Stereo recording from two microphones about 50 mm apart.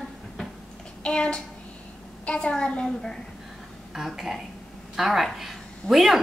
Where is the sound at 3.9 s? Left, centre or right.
Centre.